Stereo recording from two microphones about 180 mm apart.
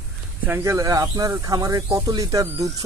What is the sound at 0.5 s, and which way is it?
Speech, 20° right (ahead or behind).